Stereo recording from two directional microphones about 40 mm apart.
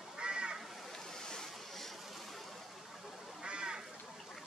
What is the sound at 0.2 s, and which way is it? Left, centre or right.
Crow, right.